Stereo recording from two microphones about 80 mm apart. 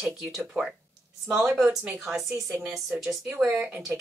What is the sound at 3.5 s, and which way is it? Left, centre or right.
Speech, right.